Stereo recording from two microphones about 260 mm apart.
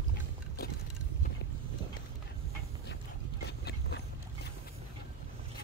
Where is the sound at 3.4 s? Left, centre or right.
Left.